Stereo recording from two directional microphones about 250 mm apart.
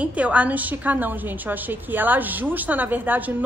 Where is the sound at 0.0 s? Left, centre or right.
Centre.